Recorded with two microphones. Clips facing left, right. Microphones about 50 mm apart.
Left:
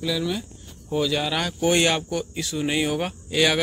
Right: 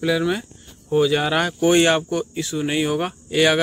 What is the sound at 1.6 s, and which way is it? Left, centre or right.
Speech, centre.